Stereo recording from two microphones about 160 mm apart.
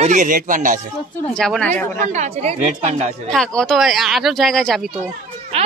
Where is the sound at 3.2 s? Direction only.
5° left (ahead or behind).